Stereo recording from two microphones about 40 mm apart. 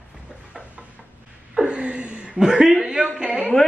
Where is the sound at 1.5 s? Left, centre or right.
Right.